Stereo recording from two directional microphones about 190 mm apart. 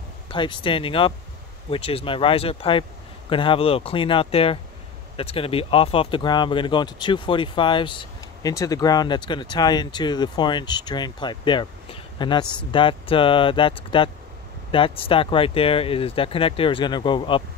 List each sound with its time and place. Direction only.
0.3 s speech: 25° left (ahead or behind)